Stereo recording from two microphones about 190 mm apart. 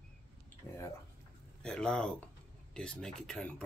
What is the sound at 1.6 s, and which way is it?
Speech, 5° left (ahead or behind).